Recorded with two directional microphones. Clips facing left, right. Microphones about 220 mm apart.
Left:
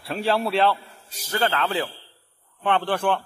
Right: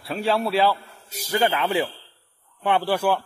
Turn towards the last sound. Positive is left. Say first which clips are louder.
# right 1 dB
turn(degrees=-10)  # may be behind; listen again after turning